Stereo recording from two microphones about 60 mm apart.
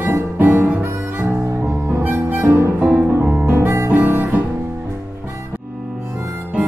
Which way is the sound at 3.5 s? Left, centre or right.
Right.